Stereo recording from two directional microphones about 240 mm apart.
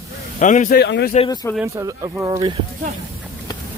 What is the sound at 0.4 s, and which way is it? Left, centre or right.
Speech, left.